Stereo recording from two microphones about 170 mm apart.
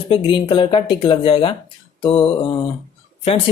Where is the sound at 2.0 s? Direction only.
35° left (ahead or behind).